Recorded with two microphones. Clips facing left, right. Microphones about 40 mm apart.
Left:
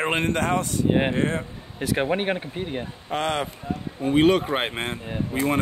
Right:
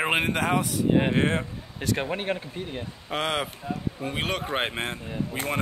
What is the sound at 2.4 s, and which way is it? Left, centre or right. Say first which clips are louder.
Speech: left 4 dB; left.